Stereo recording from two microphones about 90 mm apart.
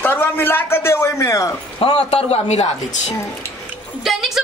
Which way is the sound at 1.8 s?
90° left.